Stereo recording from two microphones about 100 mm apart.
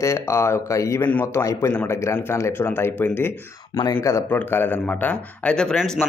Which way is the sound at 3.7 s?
40° left (ahead or behind).